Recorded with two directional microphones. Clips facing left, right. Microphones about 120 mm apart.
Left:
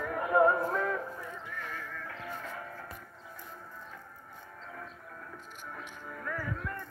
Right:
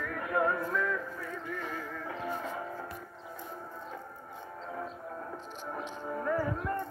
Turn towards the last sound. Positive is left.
turn(degrees=-30)  # may be behind; listen again after turning